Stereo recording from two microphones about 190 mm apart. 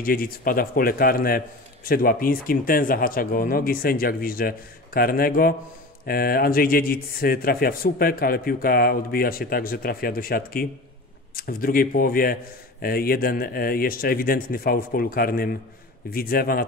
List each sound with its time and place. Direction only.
0.0 s speech: 50° left (ahead or behind)